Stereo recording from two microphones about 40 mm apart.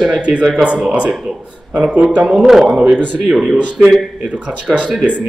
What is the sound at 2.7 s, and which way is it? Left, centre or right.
Speech, right.